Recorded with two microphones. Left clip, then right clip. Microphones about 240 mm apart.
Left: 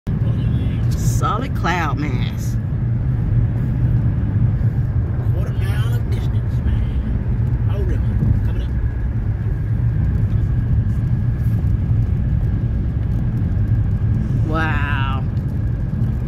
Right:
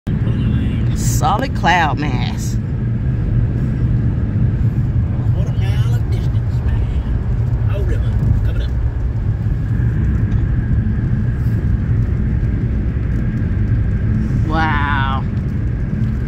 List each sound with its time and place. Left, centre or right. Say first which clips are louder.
1.0 s speech: right 5 dB; right
14.6 s vehicle: right 6 dB; centre